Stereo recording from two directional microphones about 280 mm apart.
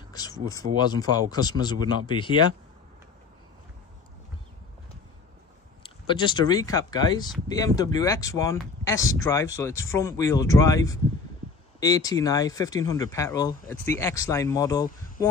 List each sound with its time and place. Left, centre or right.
0.1 s a sound: centre
0.7 s speech: centre
6.0 s speech: centre